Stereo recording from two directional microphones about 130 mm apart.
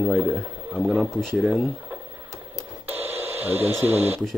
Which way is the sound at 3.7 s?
15° right (ahead or behind).